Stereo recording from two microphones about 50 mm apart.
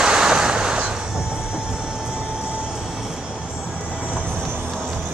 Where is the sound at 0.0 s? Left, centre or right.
Centre.